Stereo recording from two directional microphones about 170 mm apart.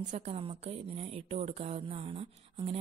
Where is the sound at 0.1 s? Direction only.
40° right (ahead or behind).